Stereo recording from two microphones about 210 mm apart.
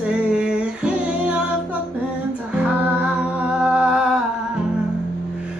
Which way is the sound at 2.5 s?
5° right (ahead or behind).